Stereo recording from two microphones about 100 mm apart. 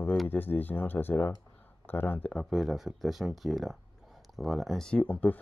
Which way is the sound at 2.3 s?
Centre (ahead or behind).